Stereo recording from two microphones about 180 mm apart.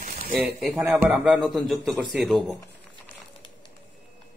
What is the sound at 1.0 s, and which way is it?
Speech, 5° right (ahead or behind).